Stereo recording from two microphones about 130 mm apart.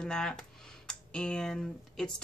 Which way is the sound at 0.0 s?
5° left (ahead or behind).